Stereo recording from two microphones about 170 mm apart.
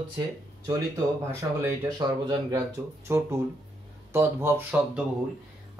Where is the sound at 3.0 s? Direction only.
15° right (ahead or behind).